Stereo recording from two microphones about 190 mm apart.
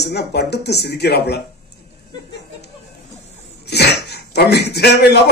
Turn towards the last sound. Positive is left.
turn(degrees=60)  # may be behind; listen again after turning